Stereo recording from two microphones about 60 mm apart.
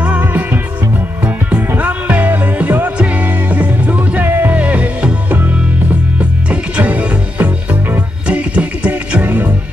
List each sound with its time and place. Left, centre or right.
0.0 s music: right
1.8 s music: right
4.6 s music: right